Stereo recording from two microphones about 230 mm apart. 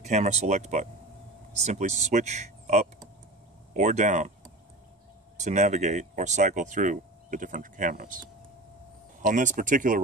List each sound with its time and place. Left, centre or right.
0.0 s speech: right
5.4 s speech: right